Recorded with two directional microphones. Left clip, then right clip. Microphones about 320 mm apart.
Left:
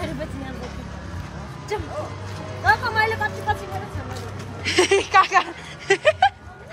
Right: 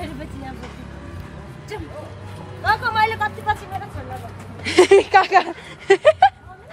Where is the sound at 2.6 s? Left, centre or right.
Centre.